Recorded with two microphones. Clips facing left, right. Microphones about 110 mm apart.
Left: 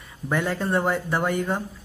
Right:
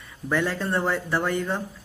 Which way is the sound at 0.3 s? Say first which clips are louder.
Left 1 dB; 15° left (ahead or behind).